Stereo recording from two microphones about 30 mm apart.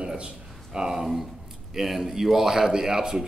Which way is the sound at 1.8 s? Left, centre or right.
Centre.